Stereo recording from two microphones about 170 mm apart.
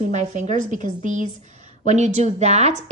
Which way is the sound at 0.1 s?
45° right (ahead or behind).